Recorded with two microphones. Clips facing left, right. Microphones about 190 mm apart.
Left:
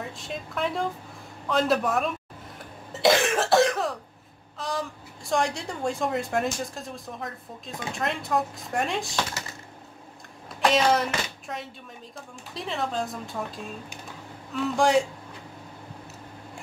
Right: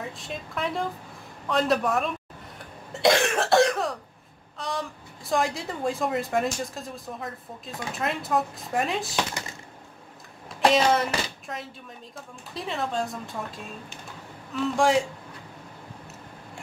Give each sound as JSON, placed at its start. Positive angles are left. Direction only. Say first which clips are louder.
{"t": 0.0, "sound": "a woman's voice", "louder": "even", "side_deg": 0}
{"t": 2.6, "sound": "cough", "louder": "even", "side_deg": 0}
{"t": 4.6, "sound": "a woman's voice", "louder": "left 1 dB", "side_deg": 0}
{"t": 10.7, "sound": "a woman's voice", "louder": "even", "side_deg": 0}